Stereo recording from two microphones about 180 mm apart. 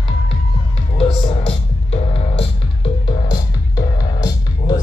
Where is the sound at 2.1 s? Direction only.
30° left (ahead or behind).